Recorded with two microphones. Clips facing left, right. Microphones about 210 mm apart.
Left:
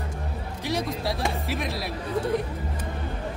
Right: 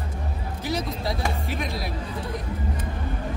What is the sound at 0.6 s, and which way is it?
Speech, centre (ahead or behind).